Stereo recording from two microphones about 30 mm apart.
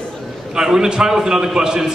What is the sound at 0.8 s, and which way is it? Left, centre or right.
A man's voice, centre.